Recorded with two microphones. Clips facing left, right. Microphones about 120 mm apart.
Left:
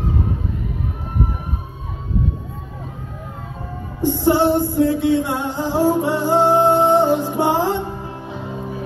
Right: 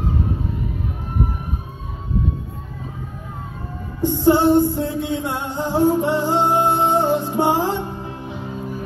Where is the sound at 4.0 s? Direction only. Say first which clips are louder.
Left 1 dB; 15° left (ahead or behind).